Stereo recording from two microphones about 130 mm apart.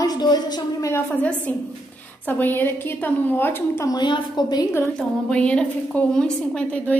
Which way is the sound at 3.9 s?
35° left (ahead or behind).